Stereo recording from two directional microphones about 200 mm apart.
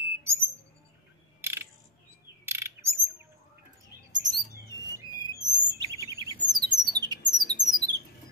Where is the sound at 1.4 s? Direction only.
10° right (ahead or behind).